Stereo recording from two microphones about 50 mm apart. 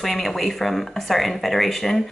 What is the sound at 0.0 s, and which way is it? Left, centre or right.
Speech, centre.